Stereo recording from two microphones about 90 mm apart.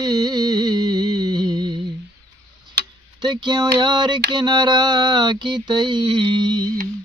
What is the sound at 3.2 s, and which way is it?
Mantra, 55° right (ahead or behind).